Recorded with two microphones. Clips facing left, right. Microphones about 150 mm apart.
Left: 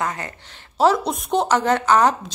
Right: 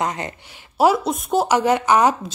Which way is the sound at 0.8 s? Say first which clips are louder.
Right 1 dB; 5° right (ahead or behind).